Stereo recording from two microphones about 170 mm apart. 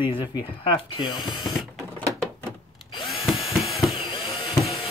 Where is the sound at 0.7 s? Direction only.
30° left (ahead or behind).